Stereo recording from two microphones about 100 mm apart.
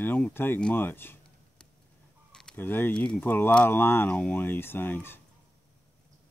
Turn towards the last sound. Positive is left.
turn(degrees=20)  # may be behind; listen again after turning